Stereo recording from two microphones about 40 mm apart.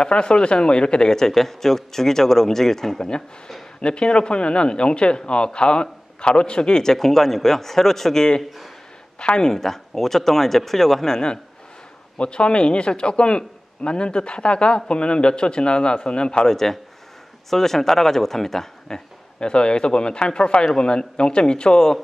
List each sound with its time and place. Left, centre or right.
0.0 s a man's voice: left
3.8 s a man's voice: left; by 11.1 s centre
12.2 s speech: left
16.4 s a man's voice: centre
19.4 s speech: left